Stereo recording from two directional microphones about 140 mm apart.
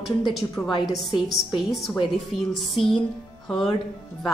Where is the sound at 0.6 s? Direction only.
10° left (ahead or behind).